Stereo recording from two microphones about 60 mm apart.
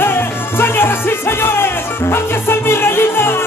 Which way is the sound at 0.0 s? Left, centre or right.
Left.